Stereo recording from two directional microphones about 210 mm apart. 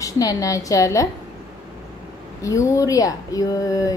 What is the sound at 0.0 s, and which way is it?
Speech, 15° left (ahead or behind).